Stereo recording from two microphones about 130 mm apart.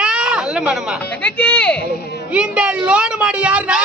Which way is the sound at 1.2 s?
15° left (ahead or behind).